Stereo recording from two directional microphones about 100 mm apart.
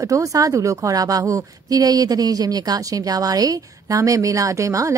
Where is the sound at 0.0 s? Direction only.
35° right (ahead or behind).